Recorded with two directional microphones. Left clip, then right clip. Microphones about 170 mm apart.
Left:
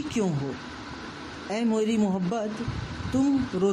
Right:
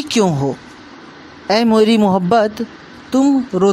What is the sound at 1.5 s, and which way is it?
Speech, 45° right (ahead or behind).